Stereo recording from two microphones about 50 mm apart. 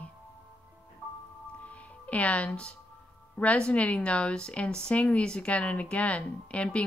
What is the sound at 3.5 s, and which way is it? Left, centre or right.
Speech, left.